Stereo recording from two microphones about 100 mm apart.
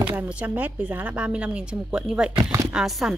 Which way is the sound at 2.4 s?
35° right (ahead or behind).